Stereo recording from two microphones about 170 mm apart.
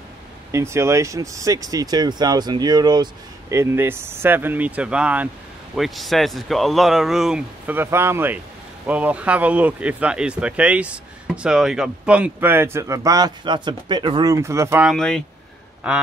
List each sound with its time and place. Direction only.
0.5 s speech: 15° right (ahead or behind)
14.9 s speech: 5° left (ahead or behind)